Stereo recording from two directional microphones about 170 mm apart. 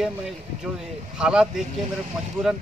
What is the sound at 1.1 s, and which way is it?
Speech, 5° right (ahead or behind).